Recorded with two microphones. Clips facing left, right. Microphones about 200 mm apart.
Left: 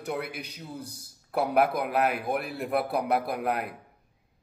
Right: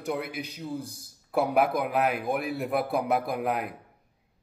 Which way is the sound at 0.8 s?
50° right (ahead or behind).